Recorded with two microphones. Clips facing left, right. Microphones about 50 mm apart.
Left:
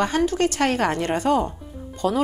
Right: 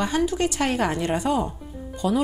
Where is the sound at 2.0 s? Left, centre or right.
Left.